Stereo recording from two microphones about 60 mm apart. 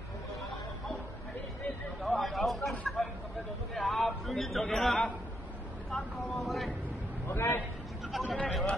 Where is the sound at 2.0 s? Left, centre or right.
Centre.